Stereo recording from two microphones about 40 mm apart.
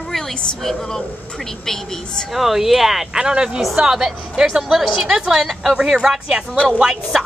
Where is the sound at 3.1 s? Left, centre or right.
Centre.